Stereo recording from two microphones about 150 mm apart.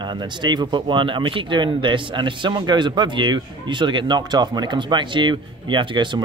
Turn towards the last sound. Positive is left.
turn(degrees=-35)  # may be behind; listen again after turning